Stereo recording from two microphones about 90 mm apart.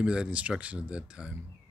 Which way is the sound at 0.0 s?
10° right (ahead or behind).